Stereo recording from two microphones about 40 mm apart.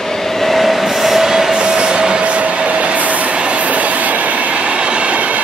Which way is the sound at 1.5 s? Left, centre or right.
Right.